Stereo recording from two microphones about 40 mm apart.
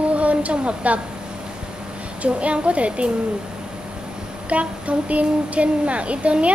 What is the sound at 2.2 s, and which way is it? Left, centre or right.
Speech, right.